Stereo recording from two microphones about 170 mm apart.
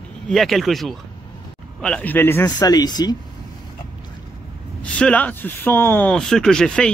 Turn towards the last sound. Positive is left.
turn(degrees=5)  # may be behind; listen again after turning